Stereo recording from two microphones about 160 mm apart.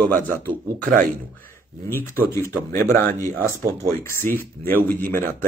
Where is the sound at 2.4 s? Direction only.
15° left (ahead or behind).